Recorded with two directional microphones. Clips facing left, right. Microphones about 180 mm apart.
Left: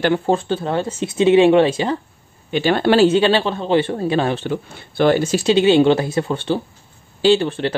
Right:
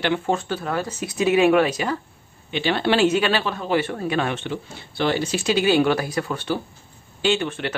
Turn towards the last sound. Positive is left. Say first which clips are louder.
# left 7 dB
turn(degrees=30)  # may be behind; listen again after turning